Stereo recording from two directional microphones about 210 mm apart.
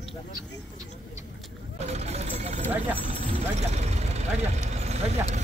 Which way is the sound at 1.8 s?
30° right (ahead or behind).